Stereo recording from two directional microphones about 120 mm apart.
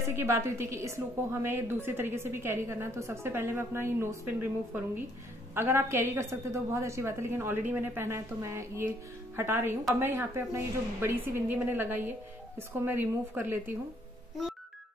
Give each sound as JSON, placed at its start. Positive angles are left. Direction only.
{"t": 0.0, "sound": "a woman's voice", "side_deg": -20}